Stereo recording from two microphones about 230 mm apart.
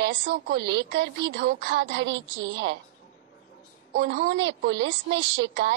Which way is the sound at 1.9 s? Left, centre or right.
Right.